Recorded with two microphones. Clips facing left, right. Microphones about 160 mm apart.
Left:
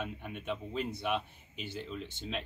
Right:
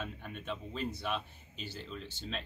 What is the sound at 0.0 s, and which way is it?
Speech, 10° left (ahead or behind).